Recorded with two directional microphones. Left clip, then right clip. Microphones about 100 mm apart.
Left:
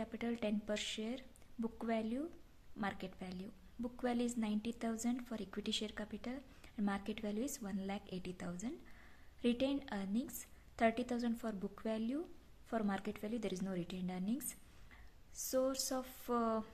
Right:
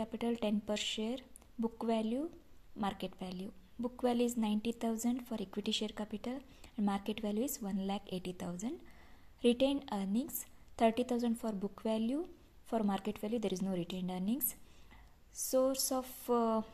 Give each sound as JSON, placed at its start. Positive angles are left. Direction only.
{"t": 0.0, "sound": "a woman's voice", "side_deg": -40}